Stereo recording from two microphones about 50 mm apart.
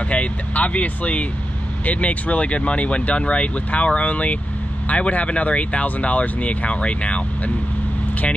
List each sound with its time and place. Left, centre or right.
0.1 s speech: left